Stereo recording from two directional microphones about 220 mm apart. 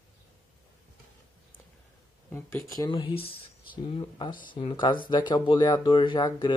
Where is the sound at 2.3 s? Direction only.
10° left (ahead or behind).